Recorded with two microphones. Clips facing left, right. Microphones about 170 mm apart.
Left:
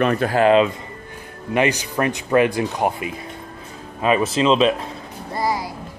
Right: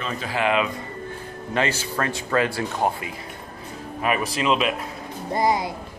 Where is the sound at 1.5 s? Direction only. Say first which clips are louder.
Left 5 dB; 15° left (ahead or behind).